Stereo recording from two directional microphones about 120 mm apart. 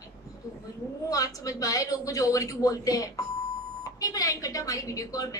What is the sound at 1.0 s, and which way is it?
A woman's voice, 30° left (ahead or behind).